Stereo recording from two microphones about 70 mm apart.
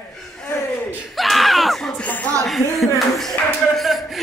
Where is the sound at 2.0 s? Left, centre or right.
Left.